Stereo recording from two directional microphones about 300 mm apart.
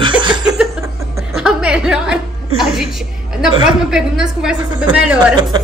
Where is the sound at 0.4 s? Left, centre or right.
Centre.